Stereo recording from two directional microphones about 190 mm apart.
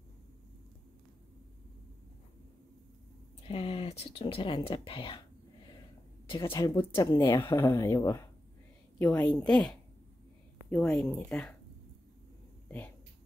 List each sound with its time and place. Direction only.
3.4 s speech: 30° left (ahead or behind)
6.2 s speech: 25° left (ahead or behind)
6.8 s speech: 10° left (ahead or behind)
10.7 s speech: 5° left (ahead or behind)